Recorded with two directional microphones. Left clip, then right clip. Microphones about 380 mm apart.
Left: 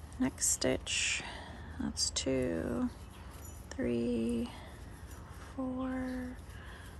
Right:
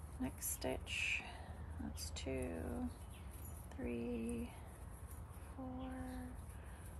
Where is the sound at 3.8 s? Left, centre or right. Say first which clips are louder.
Left 10 dB; left.